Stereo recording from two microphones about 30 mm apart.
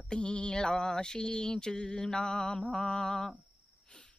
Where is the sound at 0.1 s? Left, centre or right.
Left.